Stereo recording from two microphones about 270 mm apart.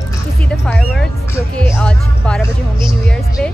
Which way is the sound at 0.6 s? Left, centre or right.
Centre.